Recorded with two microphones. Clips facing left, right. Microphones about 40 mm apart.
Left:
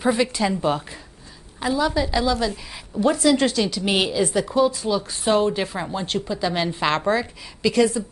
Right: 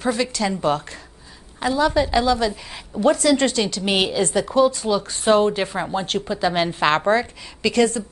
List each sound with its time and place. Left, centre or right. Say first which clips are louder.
0.0 s a woman's voice: left 1 dB; centre
0.5 s a woman's voice: right 1 dB; centre
2.0 s a woman's voice: right 3 dB; centre